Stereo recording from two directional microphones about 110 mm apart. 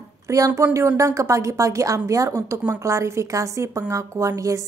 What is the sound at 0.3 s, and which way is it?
A woman's voice, 25° right (ahead or behind).